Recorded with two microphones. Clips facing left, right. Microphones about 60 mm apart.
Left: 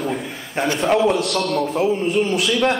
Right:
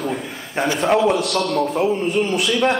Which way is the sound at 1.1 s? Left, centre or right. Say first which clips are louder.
Right 1 dB; right.